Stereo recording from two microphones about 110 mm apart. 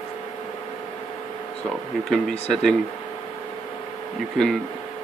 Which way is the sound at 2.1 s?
5° left (ahead or behind).